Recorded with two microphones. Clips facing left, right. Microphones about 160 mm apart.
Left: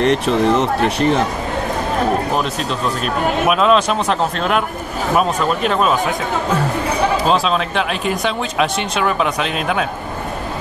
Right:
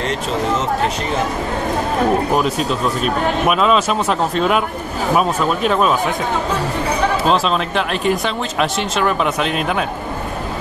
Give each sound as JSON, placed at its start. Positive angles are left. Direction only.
{"t": 0.0, "sound": "speech", "side_deg": 65}
{"t": 2.3, "sound": "speech", "side_deg": -5}
{"t": 7.2, "sound": "speech", "side_deg": 0}